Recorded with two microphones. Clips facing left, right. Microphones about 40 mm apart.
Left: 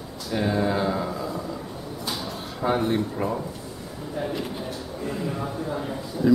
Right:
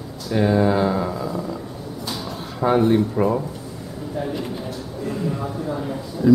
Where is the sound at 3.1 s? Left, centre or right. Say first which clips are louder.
Right 7 dB; centre.